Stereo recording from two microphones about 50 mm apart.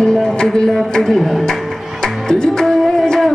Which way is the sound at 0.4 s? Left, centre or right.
Centre.